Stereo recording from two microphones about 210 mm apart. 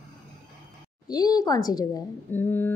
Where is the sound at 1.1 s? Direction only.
20° left (ahead or behind).